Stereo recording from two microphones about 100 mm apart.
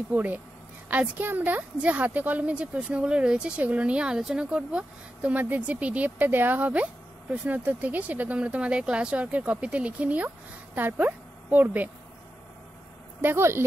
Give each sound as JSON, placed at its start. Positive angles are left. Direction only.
{"t": 0.1, "sound": "a woman's voice", "side_deg": -15}
{"t": 13.2, "sound": "speech", "side_deg": -25}